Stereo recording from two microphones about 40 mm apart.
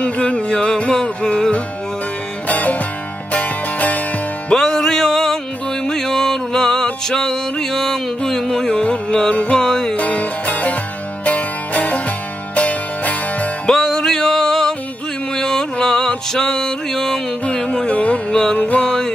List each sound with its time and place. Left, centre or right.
0.0 s music: left
0.5 s music: centre
2.4 s music: left
4.6 s music: centre
9.9 s music: left
13.7 s music: centre
17.5 s music: left
18.3 s music: centre
18.6 s music: left